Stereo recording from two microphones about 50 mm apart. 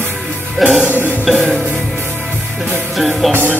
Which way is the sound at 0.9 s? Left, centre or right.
Left.